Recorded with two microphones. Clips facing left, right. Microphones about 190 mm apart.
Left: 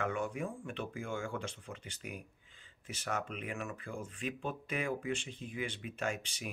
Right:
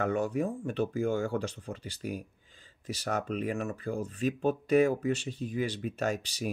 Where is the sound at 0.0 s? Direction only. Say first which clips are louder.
Right 7 dB; 40° right (ahead or behind).